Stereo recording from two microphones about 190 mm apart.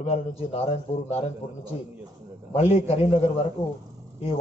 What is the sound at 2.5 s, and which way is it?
Speech, 35° left (ahead or behind).